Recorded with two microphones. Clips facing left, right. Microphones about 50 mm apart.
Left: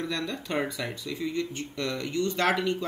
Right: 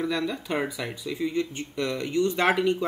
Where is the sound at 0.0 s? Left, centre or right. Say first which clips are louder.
Right 4 dB; centre.